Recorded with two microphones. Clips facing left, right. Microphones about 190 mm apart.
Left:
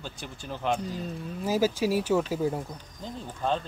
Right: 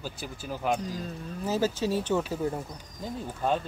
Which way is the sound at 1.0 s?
10° left (ahead or behind).